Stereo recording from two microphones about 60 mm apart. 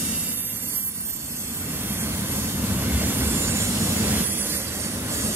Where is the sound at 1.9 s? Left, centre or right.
Right.